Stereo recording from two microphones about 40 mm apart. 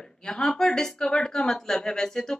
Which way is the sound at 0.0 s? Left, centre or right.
Centre.